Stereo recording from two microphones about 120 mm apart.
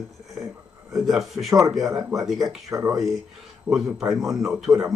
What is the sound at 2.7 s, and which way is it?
Speech, 25° right (ahead or behind).